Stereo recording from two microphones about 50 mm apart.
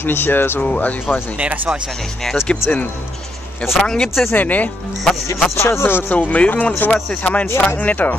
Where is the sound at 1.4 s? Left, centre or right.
Right.